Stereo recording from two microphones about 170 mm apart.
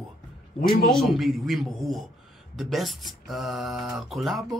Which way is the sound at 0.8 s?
Centre (ahead or behind).